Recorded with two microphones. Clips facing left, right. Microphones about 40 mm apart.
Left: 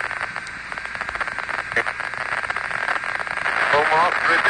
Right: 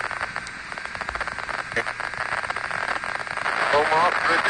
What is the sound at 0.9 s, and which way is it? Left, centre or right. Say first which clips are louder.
Radio: left 3 dB; left.